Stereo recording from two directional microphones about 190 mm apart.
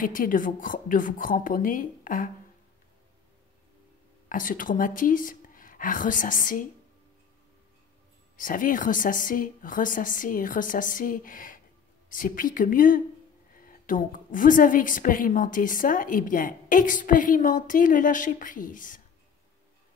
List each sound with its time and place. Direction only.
0.0 s a woman's voice: 45° left (ahead or behind)
4.3 s speech: 45° left (ahead or behind)
8.4 s a woman's voice: 45° left (ahead or behind)